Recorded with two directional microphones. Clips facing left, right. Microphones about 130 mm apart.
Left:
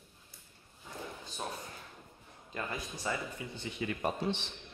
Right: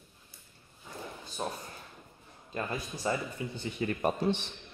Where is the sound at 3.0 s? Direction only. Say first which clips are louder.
Right 5 dB; 35° right (ahead or behind).